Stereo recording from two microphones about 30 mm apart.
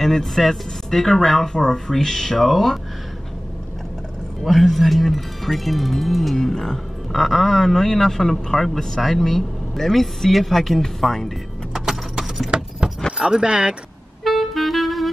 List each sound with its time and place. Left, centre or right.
0.0 s speech: centre
4.5 s speech: centre
6.3 s speech: centre
7.2 s speech: centre
11.7 s keys jangling: centre
13.2 s speech: right
14.2 s music: centre